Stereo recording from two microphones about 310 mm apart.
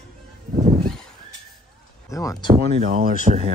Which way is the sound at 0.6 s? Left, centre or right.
Centre.